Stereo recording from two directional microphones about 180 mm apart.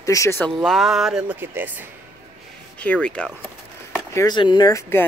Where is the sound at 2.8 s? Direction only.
5° left (ahead or behind).